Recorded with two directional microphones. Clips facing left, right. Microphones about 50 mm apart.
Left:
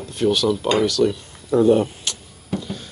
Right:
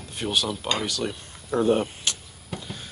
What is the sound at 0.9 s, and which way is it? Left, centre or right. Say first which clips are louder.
Speech: left 10 dB; right.